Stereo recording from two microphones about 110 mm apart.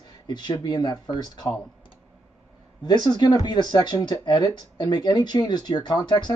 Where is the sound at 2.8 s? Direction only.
40° left (ahead or behind).